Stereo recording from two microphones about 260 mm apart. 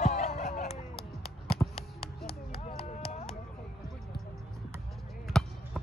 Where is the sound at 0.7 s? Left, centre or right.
Centre.